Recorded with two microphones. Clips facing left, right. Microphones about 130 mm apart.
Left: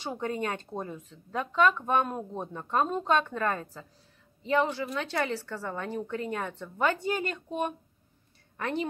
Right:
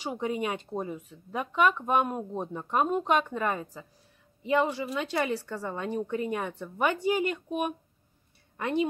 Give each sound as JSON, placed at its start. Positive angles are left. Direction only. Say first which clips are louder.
{"t": 0.0, "sound": "speech", "louder": "right 1 dB", "side_deg": -15}